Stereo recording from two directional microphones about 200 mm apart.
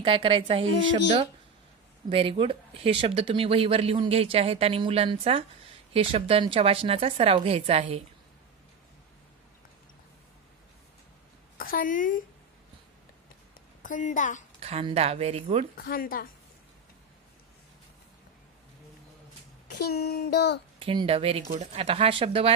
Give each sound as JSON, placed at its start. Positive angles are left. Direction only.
{"t": 0.0, "sound": "speech", "side_deg": -25}
{"t": 2.0, "sound": "speech", "side_deg": -25}
{"t": 11.5, "sound": "a woman's voice", "side_deg": 45}
{"t": 13.8, "sound": "a woman's voice", "side_deg": 40}
{"t": 14.6, "sound": "speech", "side_deg": -30}
{"t": 15.7, "sound": "speech", "side_deg": 45}
{"t": 19.7, "sound": "speech", "side_deg": 50}
{"t": 20.8, "sound": "speech", "side_deg": -25}